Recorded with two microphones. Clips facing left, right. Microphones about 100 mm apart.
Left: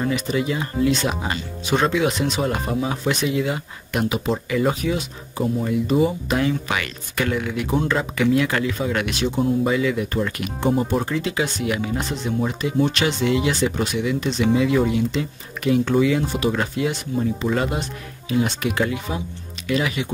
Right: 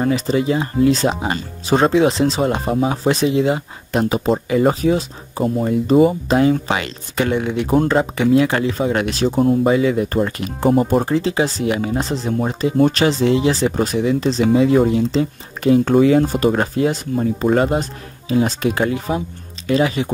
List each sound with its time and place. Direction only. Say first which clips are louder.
0.0 s speech: right 5 dB; 30° right (ahead or behind)